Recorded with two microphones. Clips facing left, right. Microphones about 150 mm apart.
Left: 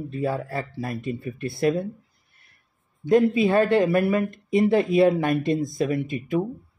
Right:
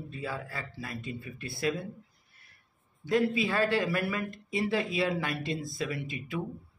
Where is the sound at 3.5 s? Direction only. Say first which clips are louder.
Left 9 dB; 50° left (ahead or behind).